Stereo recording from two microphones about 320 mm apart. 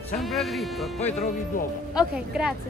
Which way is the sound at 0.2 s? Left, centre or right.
Centre.